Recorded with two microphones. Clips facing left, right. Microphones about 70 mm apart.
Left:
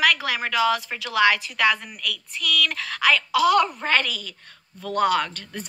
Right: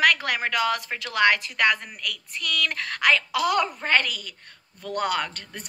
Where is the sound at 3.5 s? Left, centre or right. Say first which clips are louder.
Left 3 dB; centre.